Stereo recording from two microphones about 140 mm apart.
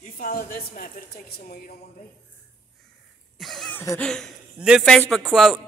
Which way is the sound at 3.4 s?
Centre (ahead or behind).